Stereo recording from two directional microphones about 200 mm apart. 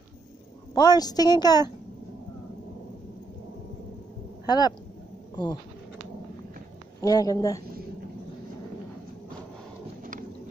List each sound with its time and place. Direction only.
0.7 s a woman's voice: 20° left (ahead or behind)
4.5 s a woman's voice: 20° left (ahead or behind)
7.0 s speech: 15° left (ahead or behind)